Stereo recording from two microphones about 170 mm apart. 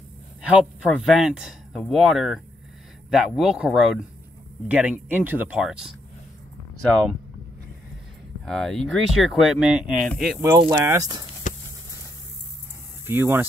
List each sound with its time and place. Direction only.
0.9 s speech: 5° right (ahead or behind)
8.5 s speech: centre (ahead or behind)
10.7 s speech: 15° right (ahead or behind)
11.4 s a sound: 50° left (ahead or behind)
13.0 s speech: 10° right (ahead or behind)